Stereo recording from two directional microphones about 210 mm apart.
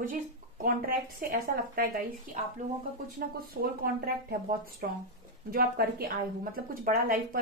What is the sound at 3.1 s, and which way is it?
A woman's voice, 45° right (ahead or behind).